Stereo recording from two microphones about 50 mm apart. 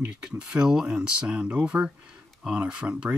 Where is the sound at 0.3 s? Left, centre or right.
Right.